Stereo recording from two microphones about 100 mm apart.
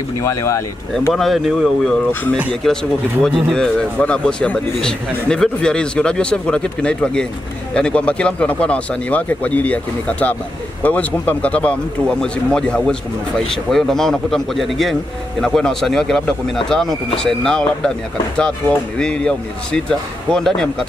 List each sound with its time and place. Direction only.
0.2 s speech: 30° left (ahead or behind)
1.1 s a man's voice: centre (ahead or behind)
18.9 s speech: 10° left (ahead or behind)